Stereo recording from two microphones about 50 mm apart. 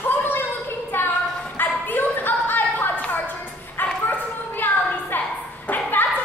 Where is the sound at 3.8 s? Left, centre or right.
Left.